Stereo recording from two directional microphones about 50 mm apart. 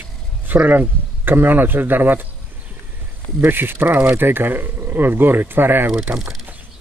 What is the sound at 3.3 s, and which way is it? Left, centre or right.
Speech, right.